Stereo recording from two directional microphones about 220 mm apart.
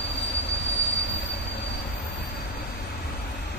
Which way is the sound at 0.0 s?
50° left (ahead or behind).